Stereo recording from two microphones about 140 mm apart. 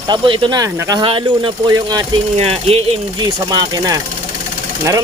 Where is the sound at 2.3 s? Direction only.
45° right (ahead or behind).